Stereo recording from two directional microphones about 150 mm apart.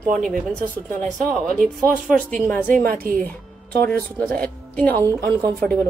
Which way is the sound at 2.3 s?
5° left (ahead or behind).